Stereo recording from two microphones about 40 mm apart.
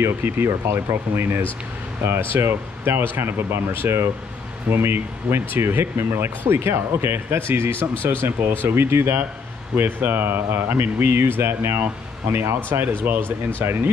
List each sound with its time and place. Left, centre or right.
0.2 s speech: right
2.0 s speech: right
5.7 s speech: right
9.8 s speech: right
12.3 s speech: right
13.0 s speech: right